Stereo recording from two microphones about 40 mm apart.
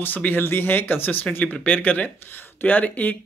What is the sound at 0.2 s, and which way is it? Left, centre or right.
Speech, left.